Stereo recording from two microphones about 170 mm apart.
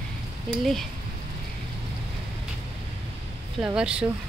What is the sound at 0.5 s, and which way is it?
Speech, centre (ahead or behind).